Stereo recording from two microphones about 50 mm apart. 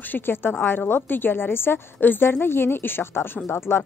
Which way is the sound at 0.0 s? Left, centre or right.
Left.